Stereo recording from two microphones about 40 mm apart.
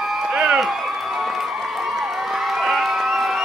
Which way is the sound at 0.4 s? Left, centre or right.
Centre.